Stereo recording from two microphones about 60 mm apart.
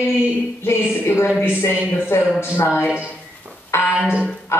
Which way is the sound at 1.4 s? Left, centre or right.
Left.